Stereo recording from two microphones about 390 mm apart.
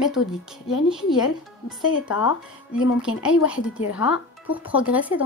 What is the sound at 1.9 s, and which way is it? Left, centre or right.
Speech, left.